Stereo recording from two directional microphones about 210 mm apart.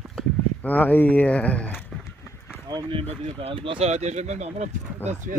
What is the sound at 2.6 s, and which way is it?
Speech, 20° right (ahead or behind).